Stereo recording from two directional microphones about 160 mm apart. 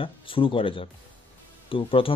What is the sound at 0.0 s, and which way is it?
Speech, 35° left (ahead or behind).